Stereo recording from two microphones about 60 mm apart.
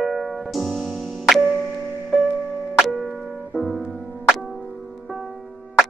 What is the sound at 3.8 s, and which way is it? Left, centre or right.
Music, right.